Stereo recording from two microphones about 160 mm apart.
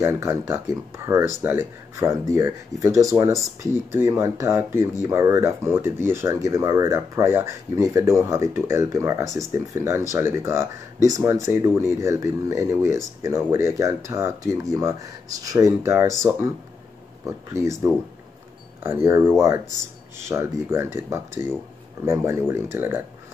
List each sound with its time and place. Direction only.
0.0 s speech: 15° right (ahead or behind)
17.3 s speech: 20° right (ahead or behind)
19.0 s speech: 15° right (ahead or behind)